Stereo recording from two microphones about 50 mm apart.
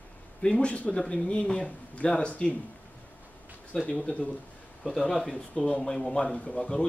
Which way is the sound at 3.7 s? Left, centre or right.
Centre.